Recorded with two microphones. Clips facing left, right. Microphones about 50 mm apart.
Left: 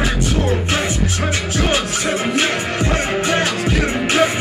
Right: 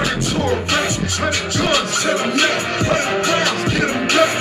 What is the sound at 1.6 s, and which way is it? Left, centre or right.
Music, centre.